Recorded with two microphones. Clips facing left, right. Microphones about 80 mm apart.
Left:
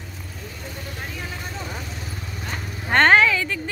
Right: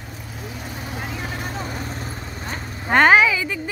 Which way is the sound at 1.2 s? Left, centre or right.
Right.